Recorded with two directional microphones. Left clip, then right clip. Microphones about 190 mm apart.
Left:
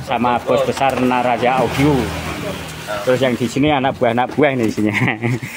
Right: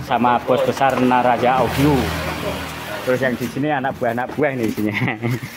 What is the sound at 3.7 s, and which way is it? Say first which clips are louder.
Speech: left 4 dB; 25° left (ahead or behind).